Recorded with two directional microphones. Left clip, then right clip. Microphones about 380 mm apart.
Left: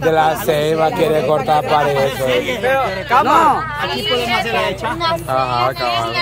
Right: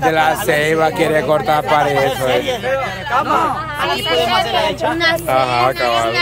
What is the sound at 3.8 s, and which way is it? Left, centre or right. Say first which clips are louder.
Speech: right 4 dB; centre.